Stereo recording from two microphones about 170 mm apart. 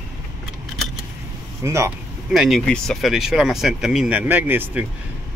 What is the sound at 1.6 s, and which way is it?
Speech, 15° right (ahead or behind).